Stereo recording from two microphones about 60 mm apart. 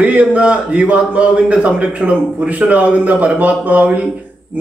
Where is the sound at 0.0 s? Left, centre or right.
Right.